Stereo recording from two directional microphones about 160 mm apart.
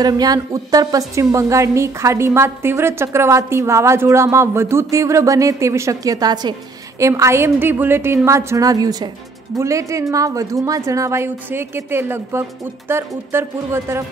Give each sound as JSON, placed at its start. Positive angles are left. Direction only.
{"t": 0.0, "sound": "a woman's voice", "side_deg": -25}